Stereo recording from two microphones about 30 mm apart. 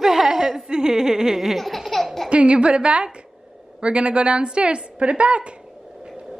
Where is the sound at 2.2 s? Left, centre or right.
Right.